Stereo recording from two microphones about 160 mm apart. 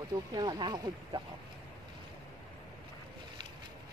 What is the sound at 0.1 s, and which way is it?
Speech, 25° right (ahead or behind).